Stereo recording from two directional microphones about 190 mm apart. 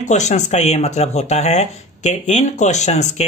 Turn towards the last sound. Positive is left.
turn(degrees=35)  # may be behind; listen again after turning